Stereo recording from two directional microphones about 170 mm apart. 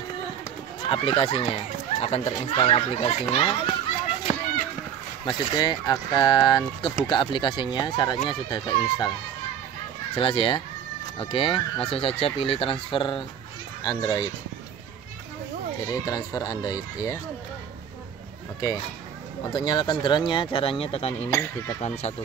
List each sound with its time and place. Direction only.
0.8 s speech: 30° left (ahead or behind)
5.2 s speech: 25° left (ahead or behind)
10.1 s speech: 30° left (ahead or behind)
15.9 s speech: 20° left (ahead or behind)
19.5 s speech: 25° left (ahead or behind)
21.3 s speech: 15° left (ahead or behind)
21.8 s speech: 40° left (ahead or behind)